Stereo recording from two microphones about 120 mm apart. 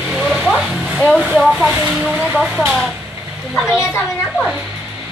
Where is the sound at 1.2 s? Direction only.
Centre (ahead or behind).